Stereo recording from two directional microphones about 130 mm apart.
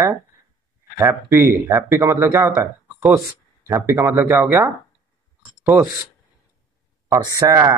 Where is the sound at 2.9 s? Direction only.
10° right (ahead or behind).